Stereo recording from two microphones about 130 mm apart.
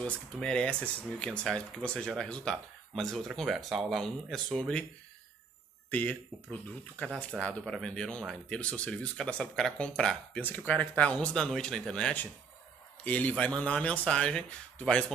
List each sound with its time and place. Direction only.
0.0 s speech: 5° left (ahead or behind)
5.9 s speech: 15° left (ahead or behind)
7.2 s speech: 10° left (ahead or behind)